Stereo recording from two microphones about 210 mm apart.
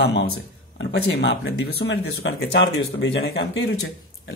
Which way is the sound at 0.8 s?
55° left (ahead or behind).